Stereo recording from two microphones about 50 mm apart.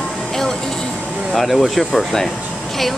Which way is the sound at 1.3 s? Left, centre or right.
Centre.